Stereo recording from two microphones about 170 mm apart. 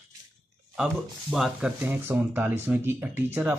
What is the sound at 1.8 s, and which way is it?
Speech, 10° right (ahead or behind).